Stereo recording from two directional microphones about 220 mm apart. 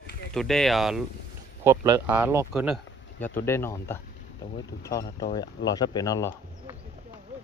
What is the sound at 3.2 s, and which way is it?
Speech, 10° left (ahead or behind).